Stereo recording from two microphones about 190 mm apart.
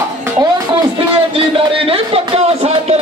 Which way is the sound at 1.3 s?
30° right (ahead or behind).